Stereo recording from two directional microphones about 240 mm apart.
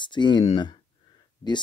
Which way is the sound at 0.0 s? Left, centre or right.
Centre.